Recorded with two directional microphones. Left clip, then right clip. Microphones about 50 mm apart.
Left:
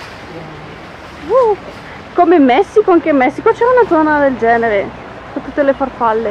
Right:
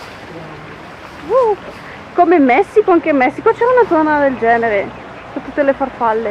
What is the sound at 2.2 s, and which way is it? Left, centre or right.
Speech, centre.